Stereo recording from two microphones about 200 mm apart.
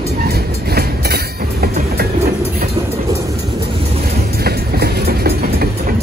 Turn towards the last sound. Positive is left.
turn(degrees=-50)  # may be behind; listen again after turning